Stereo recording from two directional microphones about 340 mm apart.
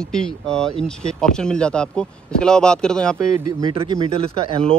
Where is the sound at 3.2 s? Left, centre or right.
Centre.